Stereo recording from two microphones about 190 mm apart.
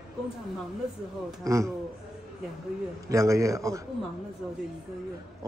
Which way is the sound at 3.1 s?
15° right (ahead or behind).